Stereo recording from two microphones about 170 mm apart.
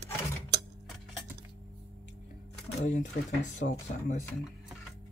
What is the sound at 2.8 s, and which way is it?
Speech, 45° left (ahead or behind).